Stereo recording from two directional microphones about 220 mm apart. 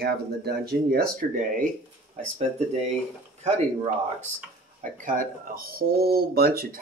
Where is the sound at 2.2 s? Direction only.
30° right (ahead or behind).